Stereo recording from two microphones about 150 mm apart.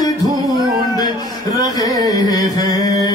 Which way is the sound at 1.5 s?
25° left (ahead or behind).